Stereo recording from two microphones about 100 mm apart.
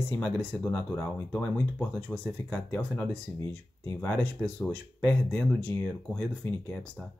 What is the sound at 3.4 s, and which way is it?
Speech, 30° left (ahead or behind).